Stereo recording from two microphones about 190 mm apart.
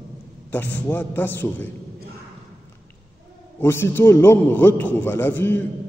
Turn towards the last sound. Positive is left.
turn(degrees=10)  # may be behind; listen again after turning